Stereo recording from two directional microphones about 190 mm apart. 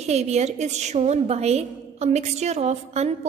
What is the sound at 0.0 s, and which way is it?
A woman's voice, 35° right (ahead or behind).